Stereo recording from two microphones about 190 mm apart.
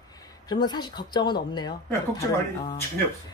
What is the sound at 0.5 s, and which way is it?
A woman's voice, 20° left (ahead or behind).